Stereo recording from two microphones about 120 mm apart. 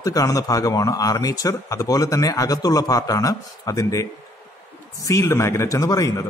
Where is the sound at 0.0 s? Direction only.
30° left (ahead or behind).